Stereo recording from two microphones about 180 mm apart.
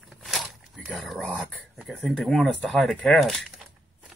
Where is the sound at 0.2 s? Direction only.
Centre (ahead or behind).